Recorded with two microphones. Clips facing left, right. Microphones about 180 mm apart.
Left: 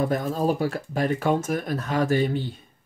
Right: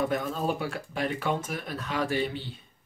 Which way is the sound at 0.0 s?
40° left (ahead or behind).